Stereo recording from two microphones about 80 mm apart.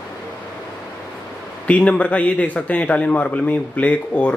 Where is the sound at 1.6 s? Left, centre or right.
Centre.